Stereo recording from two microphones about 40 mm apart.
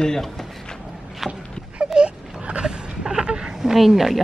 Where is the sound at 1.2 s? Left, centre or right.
Centre.